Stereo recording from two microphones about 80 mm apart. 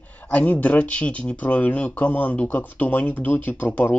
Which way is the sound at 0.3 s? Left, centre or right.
Centre.